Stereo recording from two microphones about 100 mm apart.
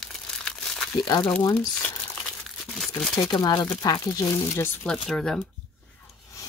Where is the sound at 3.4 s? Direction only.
40° left (ahead or behind).